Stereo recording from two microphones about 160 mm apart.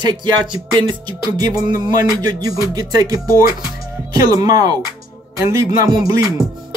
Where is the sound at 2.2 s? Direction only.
25° right (ahead or behind).